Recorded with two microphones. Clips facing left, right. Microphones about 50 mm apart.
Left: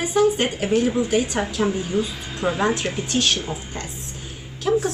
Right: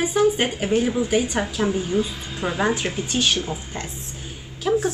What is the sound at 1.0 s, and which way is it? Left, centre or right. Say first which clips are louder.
A woman's voice: even; centre.